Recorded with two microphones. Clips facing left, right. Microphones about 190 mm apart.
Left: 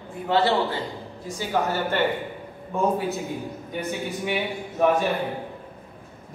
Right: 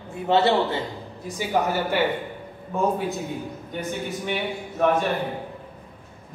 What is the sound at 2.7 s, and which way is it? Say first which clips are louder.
A man's voice: even; centre (ahead or behind).